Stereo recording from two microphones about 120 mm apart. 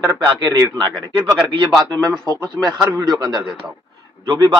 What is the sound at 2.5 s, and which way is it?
Speech, 35° right (ahead or behind).